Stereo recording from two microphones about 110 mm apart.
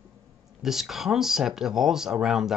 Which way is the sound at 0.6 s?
5° right (ahead or behind).